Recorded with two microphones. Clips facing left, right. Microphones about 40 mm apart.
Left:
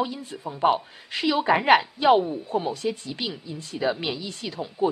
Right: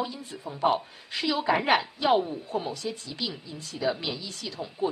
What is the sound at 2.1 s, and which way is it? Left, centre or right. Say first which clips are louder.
Speech: left 3 dB; centre.